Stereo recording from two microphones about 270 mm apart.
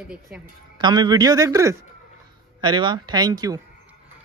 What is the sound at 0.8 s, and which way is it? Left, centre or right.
A man's voice, centre.